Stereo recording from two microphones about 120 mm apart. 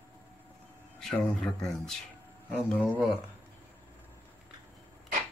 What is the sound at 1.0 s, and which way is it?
Speech, 5° left (ahead or behind).